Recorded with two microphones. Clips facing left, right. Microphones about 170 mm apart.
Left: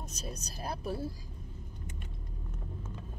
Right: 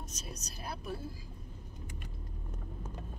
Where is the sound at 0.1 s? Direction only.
35° left (ahead or behind).